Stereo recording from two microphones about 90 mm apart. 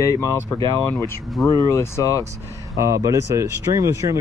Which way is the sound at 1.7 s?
30° left (ahead or behind).